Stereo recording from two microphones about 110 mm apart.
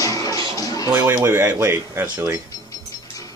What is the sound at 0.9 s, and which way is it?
Speech, 20° right (ahead or behind).